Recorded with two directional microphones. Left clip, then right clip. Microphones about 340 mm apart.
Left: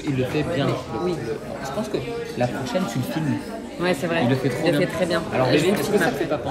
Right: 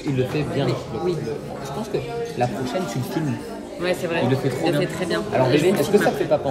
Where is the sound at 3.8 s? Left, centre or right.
Centre.